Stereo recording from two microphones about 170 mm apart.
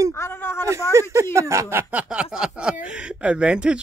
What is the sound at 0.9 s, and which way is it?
Speech, 15° right (ahead or behind).